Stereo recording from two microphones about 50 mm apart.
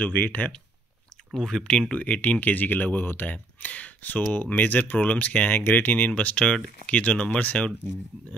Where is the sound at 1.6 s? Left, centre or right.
Centre.